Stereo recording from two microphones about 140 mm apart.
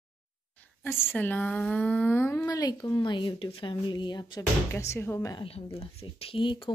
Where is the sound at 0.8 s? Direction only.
15° left (ahead or behind); by 4.5 s 30° left (ahead or behind).